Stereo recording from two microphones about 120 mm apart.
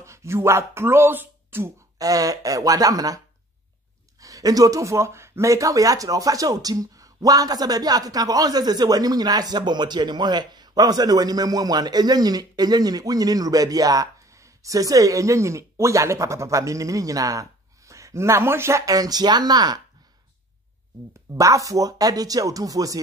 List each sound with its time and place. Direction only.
0.0 s speech: 25° right (ahead or behind)
2.0 s speech: 30° right (ahead or behind)
4.2 s speech: 30° right (ahead or behind)
21.4 s speech: 25° right (ahead or behind)